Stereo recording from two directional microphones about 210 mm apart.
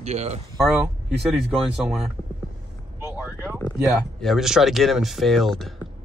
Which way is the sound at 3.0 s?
10° right (ahead or behind).